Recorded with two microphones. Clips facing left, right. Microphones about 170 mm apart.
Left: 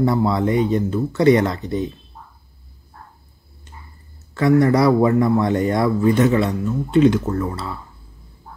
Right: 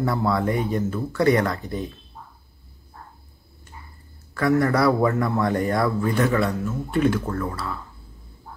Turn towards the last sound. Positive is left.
turn(degrees=25)  # may be behind; listen again after turning